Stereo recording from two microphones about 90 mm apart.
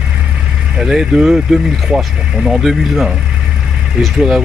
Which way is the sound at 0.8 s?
5° right (ahead or behind).